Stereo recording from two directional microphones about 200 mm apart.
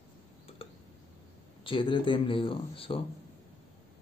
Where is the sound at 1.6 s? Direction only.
25° left (ahead or behind).